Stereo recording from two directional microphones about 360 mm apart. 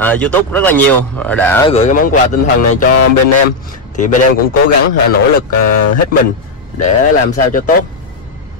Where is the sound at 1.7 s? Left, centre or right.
Centre.